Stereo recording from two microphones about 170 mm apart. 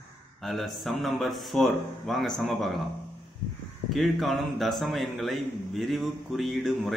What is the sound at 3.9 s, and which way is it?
A man's voice, centre (ahead or behind).